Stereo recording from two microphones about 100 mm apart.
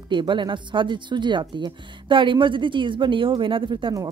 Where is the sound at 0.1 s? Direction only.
50° right (ahead or behind).